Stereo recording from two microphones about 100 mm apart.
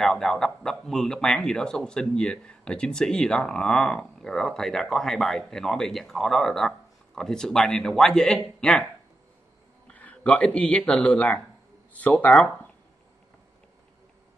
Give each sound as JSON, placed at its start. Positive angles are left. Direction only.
{"t": 0.0, "sound": "speech", "side_deg": 5}
{"t": 9.9, "sound": "speech", "side_deg": 15}